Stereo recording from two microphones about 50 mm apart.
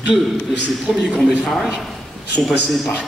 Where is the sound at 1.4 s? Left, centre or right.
Centre.